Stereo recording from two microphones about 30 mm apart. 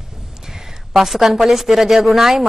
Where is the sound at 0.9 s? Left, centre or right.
Centre.